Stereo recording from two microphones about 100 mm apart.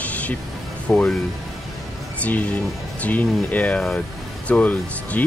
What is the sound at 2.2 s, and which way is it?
Speech, 15° left (ahead or behind).